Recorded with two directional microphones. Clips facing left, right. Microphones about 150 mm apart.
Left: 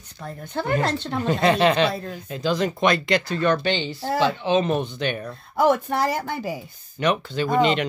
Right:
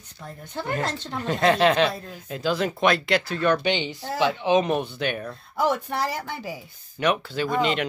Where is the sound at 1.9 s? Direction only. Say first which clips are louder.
Left 4 dB; 80° left.